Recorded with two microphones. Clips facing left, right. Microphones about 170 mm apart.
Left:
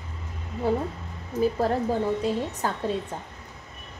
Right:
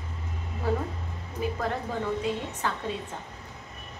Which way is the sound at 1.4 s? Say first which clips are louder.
Left 7 dB; 35° left (ahead or behind).